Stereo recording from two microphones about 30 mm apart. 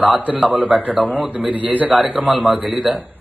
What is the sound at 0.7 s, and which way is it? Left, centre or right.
A man's voice, right.